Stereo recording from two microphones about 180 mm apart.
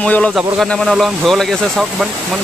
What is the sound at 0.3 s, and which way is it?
Speech, 5° right (ahead or behind).